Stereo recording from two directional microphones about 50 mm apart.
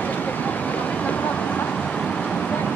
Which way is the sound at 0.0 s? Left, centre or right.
Left.